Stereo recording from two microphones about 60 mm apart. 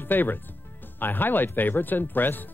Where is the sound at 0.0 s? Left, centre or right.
Left.